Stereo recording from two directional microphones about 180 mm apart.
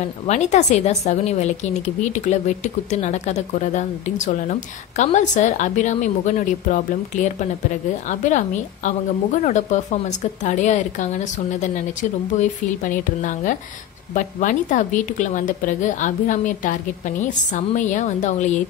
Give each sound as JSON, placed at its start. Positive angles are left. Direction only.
{"t": 0.3, "sound": "a woman's voice", "side_deg": 40}